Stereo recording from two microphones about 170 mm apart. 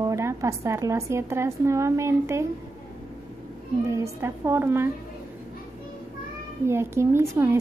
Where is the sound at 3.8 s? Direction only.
15° right (ahead or behind).